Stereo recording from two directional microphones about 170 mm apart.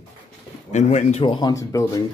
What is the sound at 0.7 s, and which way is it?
Speech, 45° left (ahead or behind).